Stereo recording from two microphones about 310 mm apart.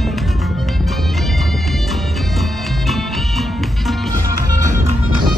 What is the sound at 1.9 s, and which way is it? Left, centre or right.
Music, centre.